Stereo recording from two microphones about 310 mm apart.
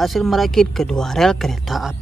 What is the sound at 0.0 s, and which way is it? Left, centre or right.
Speech, centre.